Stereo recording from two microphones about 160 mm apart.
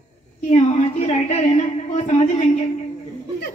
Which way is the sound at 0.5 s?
45° left (ahead or behind).